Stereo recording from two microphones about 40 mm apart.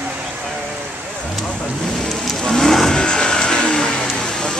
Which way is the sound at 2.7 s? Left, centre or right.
Centre.